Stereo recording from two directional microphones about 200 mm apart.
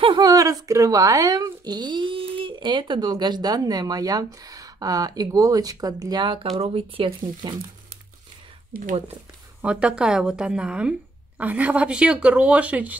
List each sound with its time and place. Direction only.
0.0 s speech: 20° right (ahead or behind)
8.7 s speech: 45° right (ahead or behind)
9.6 s speech: 5° right (ahead or behind)